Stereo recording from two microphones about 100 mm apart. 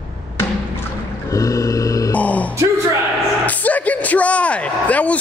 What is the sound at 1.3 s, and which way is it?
Grunt, 35° left (ahead or behind).